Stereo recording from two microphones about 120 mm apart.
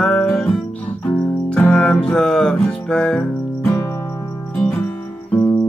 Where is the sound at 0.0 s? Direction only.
5° left (ahead or behind).